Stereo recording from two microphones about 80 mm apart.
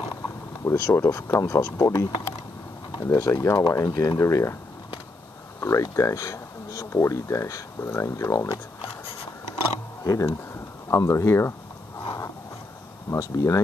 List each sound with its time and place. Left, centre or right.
0.7 s speech: left
5.6 s speech: left
10.0 s speech: left
12.0 s a sound: left
13.1 s speech: left